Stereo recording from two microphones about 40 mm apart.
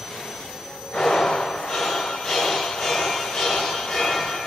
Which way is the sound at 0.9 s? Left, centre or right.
Centre.